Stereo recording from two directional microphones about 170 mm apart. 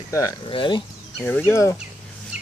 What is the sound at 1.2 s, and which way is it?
Speech, 10° left (ahead or behind).